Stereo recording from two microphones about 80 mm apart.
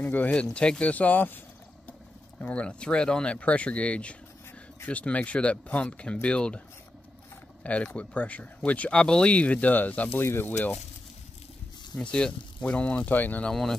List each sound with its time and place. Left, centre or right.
0.0 s speech: centre
7.6 s speech: centre
12.0 s speech: centre
13.5 s speech: centre